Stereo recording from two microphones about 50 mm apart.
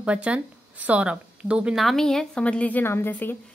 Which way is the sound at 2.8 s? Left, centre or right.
Left.